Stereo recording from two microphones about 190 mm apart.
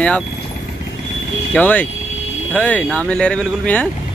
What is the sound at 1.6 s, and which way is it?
Speech, 10° left (ahead or behind).